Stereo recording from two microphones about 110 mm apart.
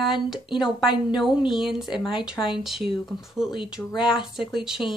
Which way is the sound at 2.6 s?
Centre (ahead or behind).